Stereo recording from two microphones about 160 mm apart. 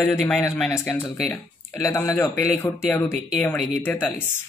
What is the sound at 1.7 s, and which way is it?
Speech, 15° left (ahead or behind).